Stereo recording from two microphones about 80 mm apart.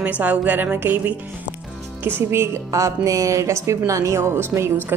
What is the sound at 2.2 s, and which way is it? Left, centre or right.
A woman's voice, right.